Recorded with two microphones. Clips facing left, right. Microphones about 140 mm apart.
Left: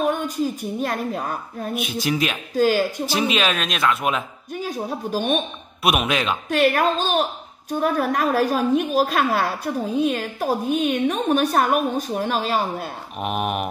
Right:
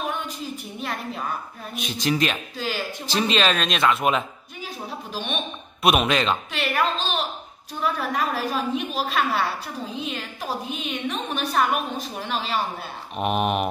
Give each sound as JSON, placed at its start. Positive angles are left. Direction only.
{"t": 0.0, "sound": "a woman's voice", "side_deg": 45}
{"t": 1.8, "sound": "speech", "side_deg": 10}
{"t": 2.5, "sound": "a woman's voice", "side_deg": 45}
{"t": 3.2, "sound": "speech", "side_deg": 5}
{"t": 4.6, "sound": "a woman's voice", "side_deg": 45}
{"t": 5.8, "sound": "speech", "side_deg": 0}
{"t": 6.5, "sound": "a woman's voice", "side_deg": 45}
{"t": 13.2, "sound": "speech", "side_deg": 0}